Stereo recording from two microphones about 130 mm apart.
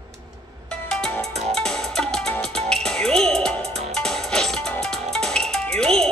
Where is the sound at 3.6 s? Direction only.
55° right (ahead or behind).